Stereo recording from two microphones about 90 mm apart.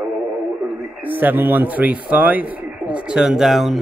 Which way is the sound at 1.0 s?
20° right (ahead or behind).